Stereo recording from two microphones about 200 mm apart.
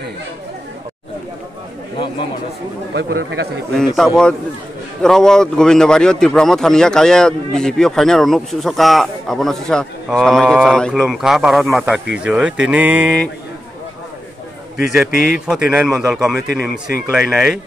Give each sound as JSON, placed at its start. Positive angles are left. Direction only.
{"t": 2.9, "sound": "speech", "side_deg": -55}
{"t": 3.7, "sound": "a man's voice", "side_deg": 0}
{"t": 14.8, "sound": "a man's voice", "side_deg": 0}